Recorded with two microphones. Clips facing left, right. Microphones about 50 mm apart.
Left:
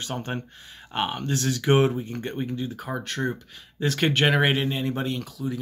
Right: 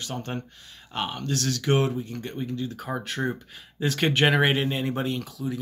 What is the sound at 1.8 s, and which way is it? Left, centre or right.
Speech, left.